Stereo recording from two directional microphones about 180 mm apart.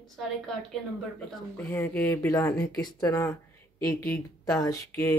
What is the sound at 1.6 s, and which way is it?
Speech, 10° left (ahead or behind).